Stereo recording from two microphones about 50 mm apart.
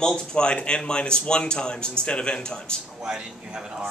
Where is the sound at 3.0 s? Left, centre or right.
Centre.